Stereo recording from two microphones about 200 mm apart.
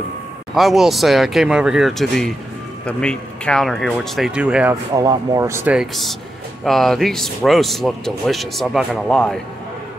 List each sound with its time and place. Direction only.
0.6 s speech: centre (ahead or behind)
4.9 s speech: 20° right (ahead or behind); by 9.4 s 5° left (ahead or behind)